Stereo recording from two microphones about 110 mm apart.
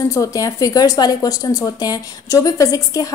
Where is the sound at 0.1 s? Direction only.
30° left (ahead or behind).